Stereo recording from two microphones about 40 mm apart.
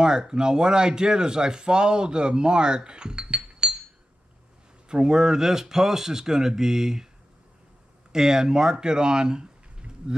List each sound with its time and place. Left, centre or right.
0.0 s speech: centre
4.8 s speech: right
8.1 s speech: centre